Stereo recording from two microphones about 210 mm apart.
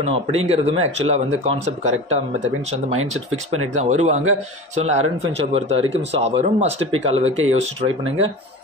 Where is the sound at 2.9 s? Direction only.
80° right.